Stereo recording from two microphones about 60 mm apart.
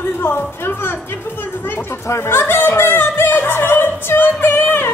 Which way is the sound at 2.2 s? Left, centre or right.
Left.